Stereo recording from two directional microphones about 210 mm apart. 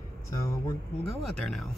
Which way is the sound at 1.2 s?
Centre (ahead or behind).